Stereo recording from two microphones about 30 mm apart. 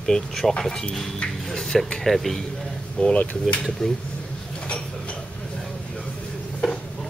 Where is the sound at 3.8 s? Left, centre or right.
Left.